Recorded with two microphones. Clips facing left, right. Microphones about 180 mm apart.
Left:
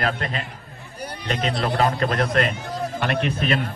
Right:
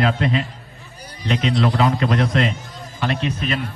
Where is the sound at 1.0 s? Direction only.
60° left (ahead or behind).